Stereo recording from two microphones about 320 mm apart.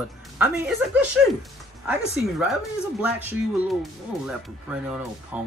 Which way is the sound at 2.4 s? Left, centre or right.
Centre.